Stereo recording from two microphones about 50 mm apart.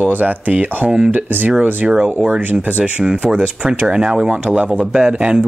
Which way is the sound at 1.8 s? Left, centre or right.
Right.